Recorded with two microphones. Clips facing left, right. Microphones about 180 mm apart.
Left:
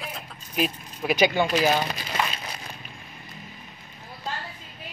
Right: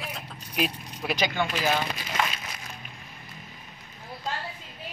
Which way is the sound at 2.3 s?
30° left (ahead or behind).